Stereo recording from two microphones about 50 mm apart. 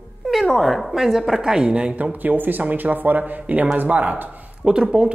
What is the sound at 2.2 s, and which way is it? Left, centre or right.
Speech, right.